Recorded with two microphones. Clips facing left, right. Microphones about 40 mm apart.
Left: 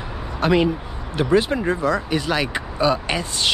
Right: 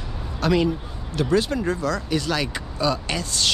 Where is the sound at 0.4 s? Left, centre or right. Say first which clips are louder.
Left 3 dB; left.